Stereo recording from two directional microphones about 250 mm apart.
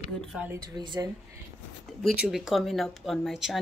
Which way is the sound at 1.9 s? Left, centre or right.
Centre.